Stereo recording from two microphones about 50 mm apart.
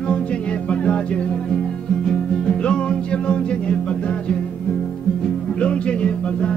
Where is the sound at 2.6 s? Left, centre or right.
Left.